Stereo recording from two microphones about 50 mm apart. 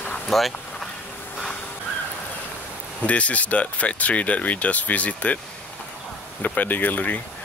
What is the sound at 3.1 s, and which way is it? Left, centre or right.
Speech, left.